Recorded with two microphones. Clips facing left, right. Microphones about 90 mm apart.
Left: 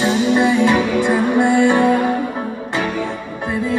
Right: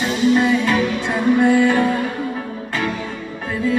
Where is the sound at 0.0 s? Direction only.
20° left (ahead or behind).